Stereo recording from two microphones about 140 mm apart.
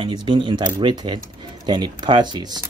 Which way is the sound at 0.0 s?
35° right (ahead or behind).